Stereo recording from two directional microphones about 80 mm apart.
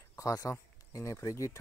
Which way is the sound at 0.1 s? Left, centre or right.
Left.